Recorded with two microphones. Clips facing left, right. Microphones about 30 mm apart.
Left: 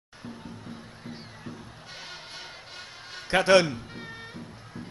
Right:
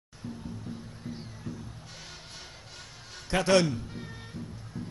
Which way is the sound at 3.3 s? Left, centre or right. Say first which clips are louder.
Left 4 dB; left.